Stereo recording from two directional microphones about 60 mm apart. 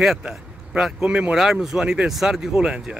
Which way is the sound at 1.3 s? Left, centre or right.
Centre.